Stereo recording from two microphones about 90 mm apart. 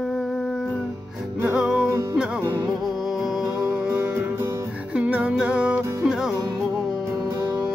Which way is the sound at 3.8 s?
20° right (ahead or behind).